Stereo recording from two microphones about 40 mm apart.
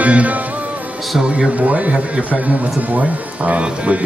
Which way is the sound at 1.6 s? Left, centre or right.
Right.